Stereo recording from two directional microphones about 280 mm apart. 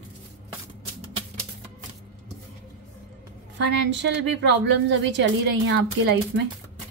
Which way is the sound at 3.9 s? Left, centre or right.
Right.